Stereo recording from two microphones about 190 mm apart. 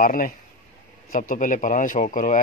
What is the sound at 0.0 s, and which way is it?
Speech, 45° left (ahead or behind).